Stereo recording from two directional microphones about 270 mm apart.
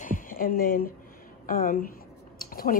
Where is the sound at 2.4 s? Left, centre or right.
Left.